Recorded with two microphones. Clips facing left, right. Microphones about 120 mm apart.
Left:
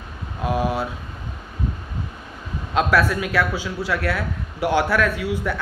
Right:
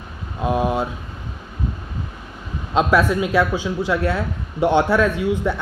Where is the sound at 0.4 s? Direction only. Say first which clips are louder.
Right 3 dB; 20° right (ahead or behind).